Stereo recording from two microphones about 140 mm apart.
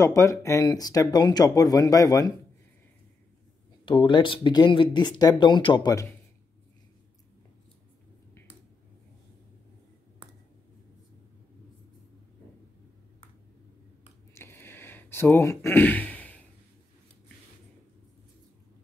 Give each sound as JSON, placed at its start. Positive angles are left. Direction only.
{"t": 0.0, "sound": "speech", "side_deg": 20}
{"t": 3.8, "sound": "speech", "side_deg": 35}
{"t": 14.3, "sound": "a sound", "side_deg": 15}